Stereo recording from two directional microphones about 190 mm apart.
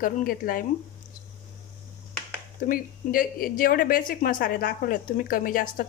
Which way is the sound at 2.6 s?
45° left (ahead or behind).